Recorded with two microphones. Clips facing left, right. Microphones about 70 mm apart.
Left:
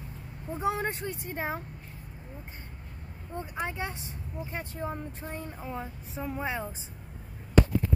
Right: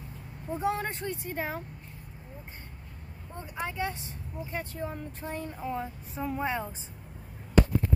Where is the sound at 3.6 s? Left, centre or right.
Left.